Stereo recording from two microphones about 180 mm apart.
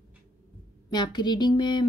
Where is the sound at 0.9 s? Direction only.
25° left (ahead or behind).